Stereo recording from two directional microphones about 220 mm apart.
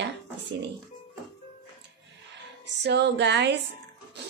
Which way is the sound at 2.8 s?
50° right (ahead or behind).